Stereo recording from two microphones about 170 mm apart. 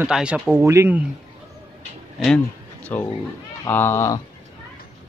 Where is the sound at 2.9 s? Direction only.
10° left (ahead or behind).